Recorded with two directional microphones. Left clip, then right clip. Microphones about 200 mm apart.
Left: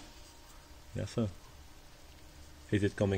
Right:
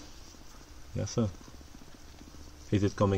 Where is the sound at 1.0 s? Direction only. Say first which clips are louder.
Right 4 dB; 10° right (ahead or behind).